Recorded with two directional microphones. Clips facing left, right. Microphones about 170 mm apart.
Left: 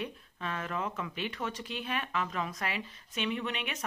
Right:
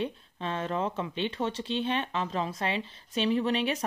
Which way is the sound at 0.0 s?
30° right (ahead or behind).